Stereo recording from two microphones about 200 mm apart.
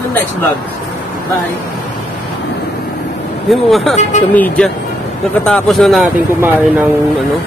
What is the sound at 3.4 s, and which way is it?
Speech, centre (ahead or behind).